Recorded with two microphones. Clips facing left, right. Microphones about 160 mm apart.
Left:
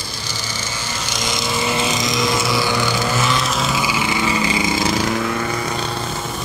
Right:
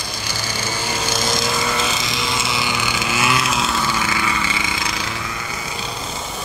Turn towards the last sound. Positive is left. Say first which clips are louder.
# left 8 dB
turn(degrees=50)  # may be behind; listen again after turning